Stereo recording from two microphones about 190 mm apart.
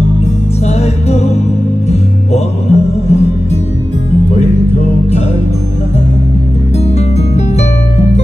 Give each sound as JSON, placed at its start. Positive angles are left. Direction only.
{"t": 0.7, "sound": "music", "side_deg": 35}
{"t": 7.0, "sound": "music", "side_deg": 35}